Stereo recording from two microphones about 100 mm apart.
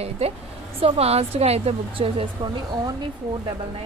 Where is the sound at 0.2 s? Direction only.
90° right.